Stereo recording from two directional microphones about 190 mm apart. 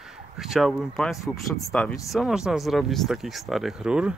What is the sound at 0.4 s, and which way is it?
Speech, centre (ahead or behind).